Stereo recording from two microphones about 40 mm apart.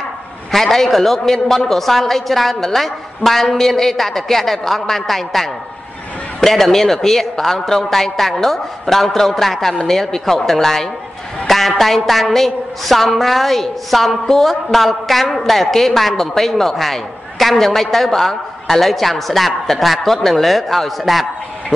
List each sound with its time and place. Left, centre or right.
0.5 s a woman's voice: centre